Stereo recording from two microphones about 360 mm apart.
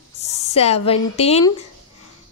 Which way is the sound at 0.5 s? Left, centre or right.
Centre.